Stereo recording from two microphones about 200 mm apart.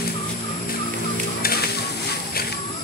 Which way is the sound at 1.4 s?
50° left (ahead or behind).